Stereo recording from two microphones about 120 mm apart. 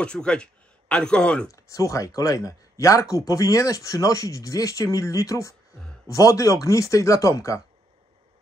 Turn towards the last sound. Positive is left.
turn(degrees=25)  # may be behind; listen again after turning